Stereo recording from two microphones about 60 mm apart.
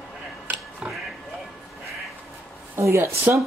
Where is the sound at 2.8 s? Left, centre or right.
Right.